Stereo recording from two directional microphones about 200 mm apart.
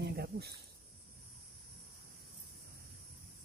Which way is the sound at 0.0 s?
55° right (ahead or behind).